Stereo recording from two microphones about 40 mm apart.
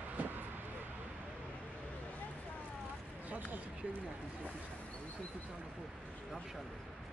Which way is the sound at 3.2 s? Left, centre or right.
Right.